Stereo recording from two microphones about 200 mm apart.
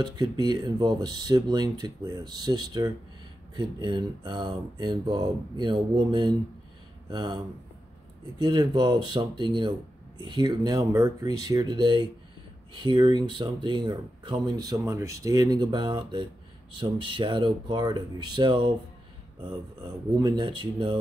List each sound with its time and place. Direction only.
0.0 s speech: 20° right (ahead or behind)
20.1 s speech: 20° right (ahead or behind)